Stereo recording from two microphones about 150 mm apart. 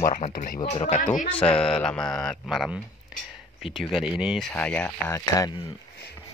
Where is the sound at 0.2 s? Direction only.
50° left (ahead or behind).